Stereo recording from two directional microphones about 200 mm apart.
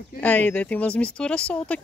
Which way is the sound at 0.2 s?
5° left (ahead or behind).